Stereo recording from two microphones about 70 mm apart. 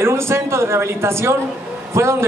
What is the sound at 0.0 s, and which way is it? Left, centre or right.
A man's voice, right.